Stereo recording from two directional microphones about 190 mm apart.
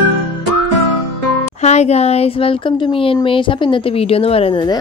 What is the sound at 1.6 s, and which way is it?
Speech, 35° left (ahead or behind).